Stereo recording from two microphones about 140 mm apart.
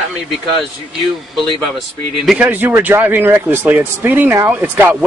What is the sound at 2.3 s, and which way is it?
Speech, 10° right (ahead or behind).